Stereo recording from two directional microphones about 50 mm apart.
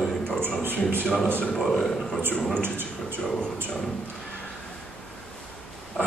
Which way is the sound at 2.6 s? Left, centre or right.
Right.